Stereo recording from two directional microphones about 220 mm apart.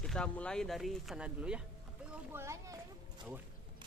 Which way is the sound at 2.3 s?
10° right (ahead or behind).